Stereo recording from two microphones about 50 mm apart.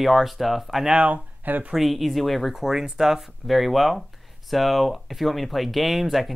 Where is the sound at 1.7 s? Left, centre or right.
Centre.